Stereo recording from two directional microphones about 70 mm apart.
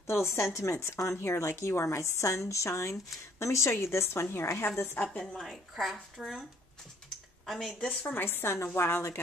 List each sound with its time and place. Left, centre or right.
0.0 s speech: left
5.4 s speech: centre
7.4 s speech: centre
8.1 s speech: left